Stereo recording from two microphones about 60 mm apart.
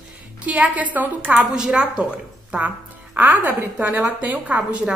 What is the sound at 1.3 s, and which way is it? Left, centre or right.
A woman's voice, centre.